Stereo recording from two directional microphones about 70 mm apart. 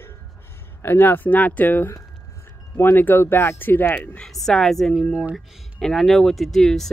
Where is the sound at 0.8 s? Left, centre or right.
Left.